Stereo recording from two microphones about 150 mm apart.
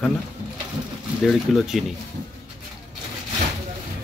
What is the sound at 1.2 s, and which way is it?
Speech, centre (ahead or behind).